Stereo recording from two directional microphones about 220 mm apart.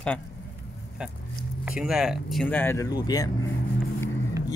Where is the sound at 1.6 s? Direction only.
5° right (ahead or behind); by 3.3 s 15° left (ahead or behind).